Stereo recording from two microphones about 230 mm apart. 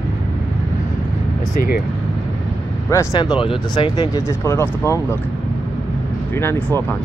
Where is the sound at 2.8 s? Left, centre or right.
Centre.